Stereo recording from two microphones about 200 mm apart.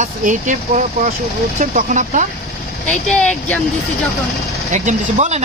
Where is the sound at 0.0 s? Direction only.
40° right (ahead or behind).